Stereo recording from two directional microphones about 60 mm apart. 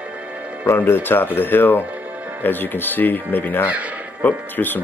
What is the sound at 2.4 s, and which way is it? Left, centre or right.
Speech, left.